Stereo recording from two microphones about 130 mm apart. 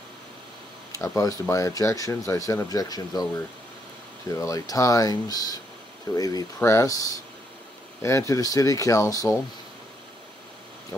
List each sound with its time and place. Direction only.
0.9 s speech: 25° left (ahead or behind)
4.3 s speech: 25° left (ahead or behind)